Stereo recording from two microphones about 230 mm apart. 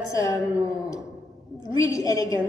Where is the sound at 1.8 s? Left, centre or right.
Centre.